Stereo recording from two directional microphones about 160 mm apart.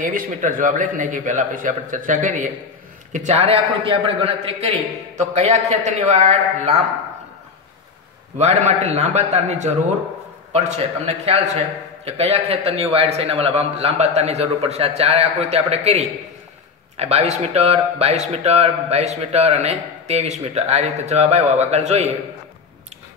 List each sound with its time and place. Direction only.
0.0 s a man's voice: 55° right (ahead or behind); by 4.6 s 35° right (ahead or behind)
5.1 s a man's voice: 45° right (ahead or behind)
8.4 s a man's voice: 45° right (ahead or behind)
11.1 s speech: 40° right (ahead or behind)